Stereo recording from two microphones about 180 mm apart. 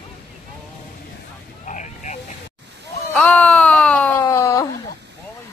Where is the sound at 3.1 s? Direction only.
5° left (ahead or behind).